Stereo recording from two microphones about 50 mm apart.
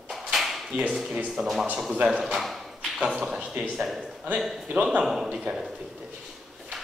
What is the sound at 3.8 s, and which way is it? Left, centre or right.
Speech, centre.